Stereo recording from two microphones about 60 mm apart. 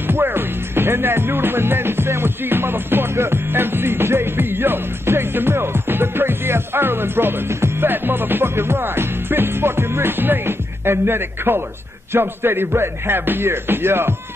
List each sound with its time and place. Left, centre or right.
0.1 s speech: right
7.9 s music: right